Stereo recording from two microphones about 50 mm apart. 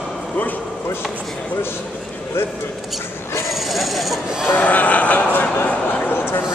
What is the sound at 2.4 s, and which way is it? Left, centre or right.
Speech, left.